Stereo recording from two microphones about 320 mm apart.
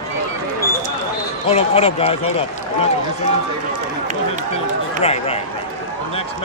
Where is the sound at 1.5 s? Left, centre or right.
Centre.